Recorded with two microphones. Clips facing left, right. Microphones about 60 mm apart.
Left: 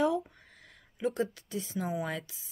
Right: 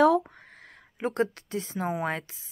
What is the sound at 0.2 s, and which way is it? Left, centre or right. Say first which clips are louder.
A woman's voice: right 2 dB; right.